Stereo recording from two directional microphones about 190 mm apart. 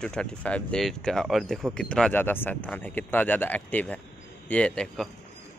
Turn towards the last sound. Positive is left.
turn(degrees=5)  # may be behind; listen again after turning